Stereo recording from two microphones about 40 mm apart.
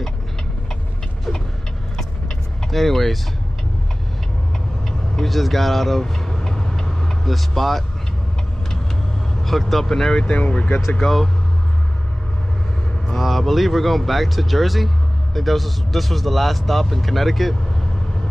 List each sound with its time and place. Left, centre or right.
2.7 s speech: centre
4.8 s vehicle: centre
7.3 s speech: centre
9.4 s speech: centre
10.2 s speech: left
11.0 s speech: centre
13.0 s speech: centre